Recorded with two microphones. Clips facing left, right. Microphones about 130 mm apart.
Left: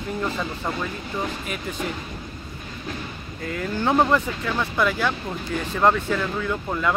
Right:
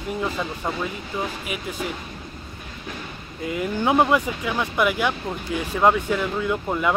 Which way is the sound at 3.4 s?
15° right (ahead or behind).